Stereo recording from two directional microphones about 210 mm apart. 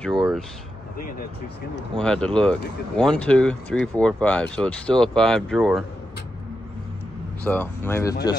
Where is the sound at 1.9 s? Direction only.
5° left (ahead or behind).